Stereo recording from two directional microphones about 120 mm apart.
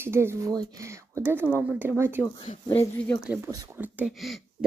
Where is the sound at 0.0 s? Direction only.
20° right (ahead or behind).